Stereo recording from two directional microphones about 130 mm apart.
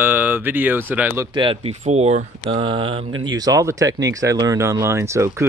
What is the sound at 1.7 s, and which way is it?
Speech, 60° right (ahead or behind).